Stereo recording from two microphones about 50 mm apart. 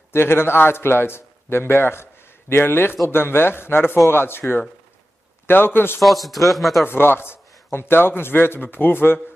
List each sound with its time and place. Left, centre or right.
0.1 s a man's voice: left
6.0 s speech: centre
6.8 s a man's voice: left